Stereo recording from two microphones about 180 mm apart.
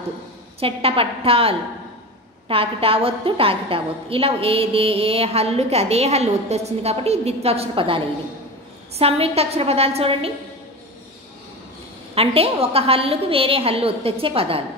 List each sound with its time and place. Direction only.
0.6 s a woman's voice: 30° right (ahead or behind)
12.2 s a woman's voice: 35° right (ahead or behind)